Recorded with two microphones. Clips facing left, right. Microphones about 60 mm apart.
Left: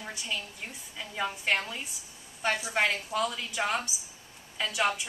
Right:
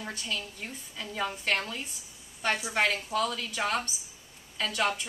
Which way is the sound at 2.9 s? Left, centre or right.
Centre.